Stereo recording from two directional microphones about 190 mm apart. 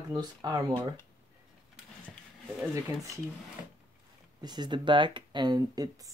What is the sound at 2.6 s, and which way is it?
Speech, 15° right (ahead or behind).